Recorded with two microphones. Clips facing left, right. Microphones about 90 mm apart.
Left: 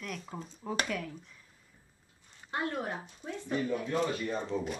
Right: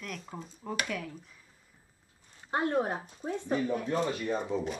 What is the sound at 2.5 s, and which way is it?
Speech, 30° right (ahead or behind).